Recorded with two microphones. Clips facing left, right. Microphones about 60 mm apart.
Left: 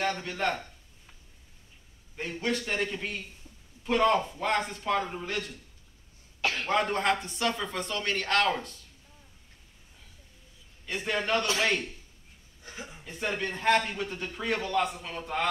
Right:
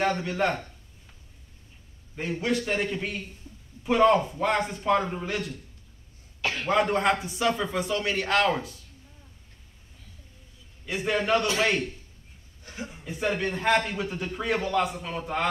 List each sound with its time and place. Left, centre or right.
0.0 s a man's voice: centre
2.4 s a man's voice: centre
6.7 s a man's voice: centre
10.9 s a man's voice: centre
13.0 s a man's voice: centre